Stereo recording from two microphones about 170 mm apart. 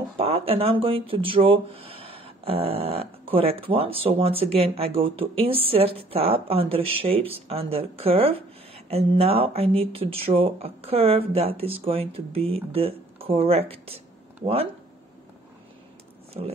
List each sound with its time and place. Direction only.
0.2 s speech: 35° right (ahead or behind)